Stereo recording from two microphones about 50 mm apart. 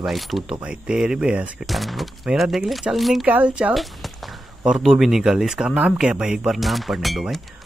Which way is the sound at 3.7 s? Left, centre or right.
Centre.